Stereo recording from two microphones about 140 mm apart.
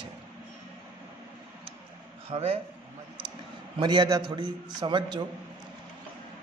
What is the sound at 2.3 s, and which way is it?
Speech, 45° right (ahead or behind).